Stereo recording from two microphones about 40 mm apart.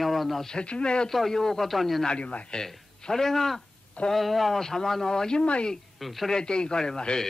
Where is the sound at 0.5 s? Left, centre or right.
Left.